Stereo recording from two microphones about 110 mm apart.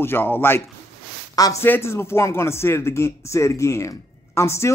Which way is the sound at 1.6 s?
20° left (ahead or behind).